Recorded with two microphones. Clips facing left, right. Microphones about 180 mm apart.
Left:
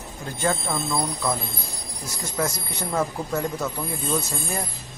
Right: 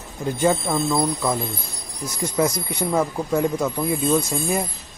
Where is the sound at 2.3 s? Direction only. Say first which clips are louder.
Right 5 dB; 20° right (ahead or behind).